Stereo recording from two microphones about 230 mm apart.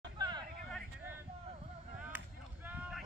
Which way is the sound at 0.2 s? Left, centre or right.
Centre.